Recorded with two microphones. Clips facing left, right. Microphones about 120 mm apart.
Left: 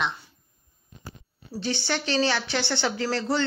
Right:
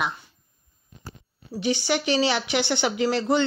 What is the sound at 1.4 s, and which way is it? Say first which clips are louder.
A woman's voice: right 4 dB; 15° right (ahead or behind).